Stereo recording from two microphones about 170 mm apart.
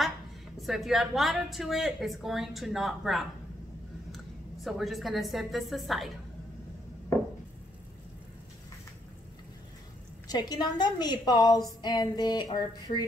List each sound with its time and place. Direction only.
0.6 s a woman's voice: centre (ahead or behind)
4.6 s a woman's voice: centre (ahead or behind)
10.2 s a woman's voice: 25° left (ahead or behind)